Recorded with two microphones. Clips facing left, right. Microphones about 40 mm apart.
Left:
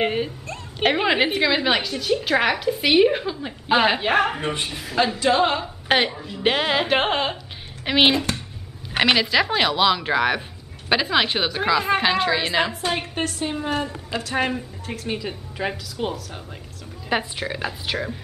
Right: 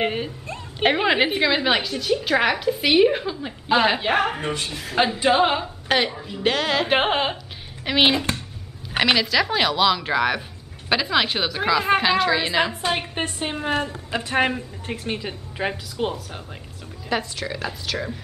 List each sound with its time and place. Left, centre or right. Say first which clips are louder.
0.0 s a woman's voice: left 2 dB; centre
4.4 s speech: left 1 dB; centre
4.9 s a woman's voice: right 1 dB; right
5.9 s a woman's voice: left 1 dB; centre
6.1 s a woman's voice: right 1 dB; centre
6.4 s speech: left 1 dB; centre
6.9 s a woman's voice: right 1 dB; centre
7.8 s a woman's voice: left 1 dB; centre
12.8 s a woman's voice: right 1 dB; centre
13.2 s a woman's voice: left 1 dB; right
14.5 s a woman's voice: even; centre
17.1 s a woman's voice: left 1 dB; left